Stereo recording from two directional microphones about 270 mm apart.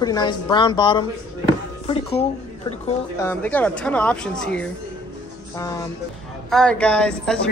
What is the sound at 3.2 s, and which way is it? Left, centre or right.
A man's voice, centre.